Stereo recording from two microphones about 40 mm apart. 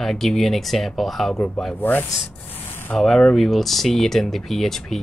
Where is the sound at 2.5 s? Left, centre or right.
Left.